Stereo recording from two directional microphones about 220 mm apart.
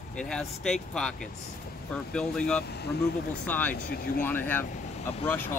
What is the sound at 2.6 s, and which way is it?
Speech, 45° left (ahead or behind).